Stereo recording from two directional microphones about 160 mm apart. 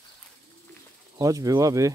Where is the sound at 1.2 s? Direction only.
20° right (ahead or behind).